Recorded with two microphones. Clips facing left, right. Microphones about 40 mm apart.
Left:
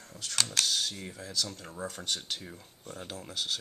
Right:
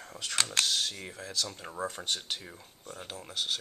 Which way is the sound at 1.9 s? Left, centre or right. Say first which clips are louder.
Left 1 dB; centre.